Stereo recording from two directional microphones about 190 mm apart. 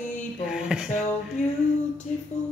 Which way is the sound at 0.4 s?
5° right (ahead or behind).